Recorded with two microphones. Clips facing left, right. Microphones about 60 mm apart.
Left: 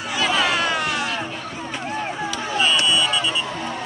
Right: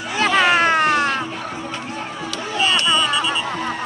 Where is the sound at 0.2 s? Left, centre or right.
Right.